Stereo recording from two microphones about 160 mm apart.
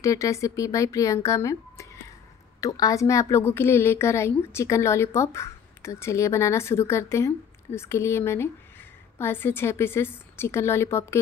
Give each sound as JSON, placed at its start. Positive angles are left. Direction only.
{"t": 0.0, "sound": "a woman's voice", "side_deg": 20}